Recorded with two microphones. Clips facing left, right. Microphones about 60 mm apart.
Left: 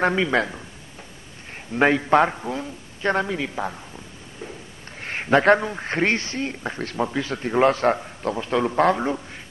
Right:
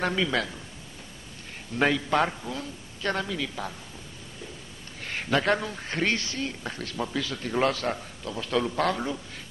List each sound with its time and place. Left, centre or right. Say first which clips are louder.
0.0 s a man's voice: left 6 dB; left
1.7 s a man's voice: left 7 dB; left
5.0 s a man's voice: left 8 dB; left
8.4 s a man's voice: left 5 dB; left